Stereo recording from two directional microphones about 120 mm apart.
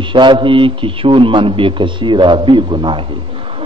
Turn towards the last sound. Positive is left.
turn(degrees=-50)  # may be behind; listen again after turning